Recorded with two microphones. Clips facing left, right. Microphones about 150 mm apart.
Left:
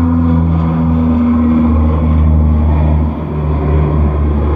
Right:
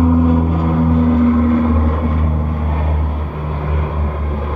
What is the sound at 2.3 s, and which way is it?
Vehicle, 25° left (ahead or behind).